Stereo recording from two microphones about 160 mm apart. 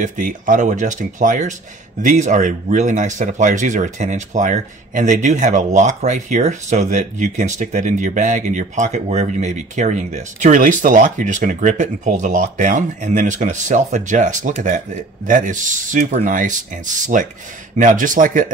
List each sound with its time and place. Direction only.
0.0 s speech: 50° right (ahead or behind)